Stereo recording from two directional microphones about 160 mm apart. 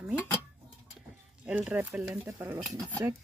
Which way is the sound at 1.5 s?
10° right (ahead or behind).